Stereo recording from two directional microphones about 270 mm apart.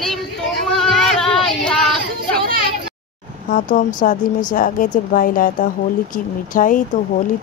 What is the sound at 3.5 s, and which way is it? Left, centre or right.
Speech, left.